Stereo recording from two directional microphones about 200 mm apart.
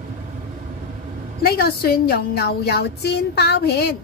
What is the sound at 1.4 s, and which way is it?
A woman's voice, 50° left (ahead or behind).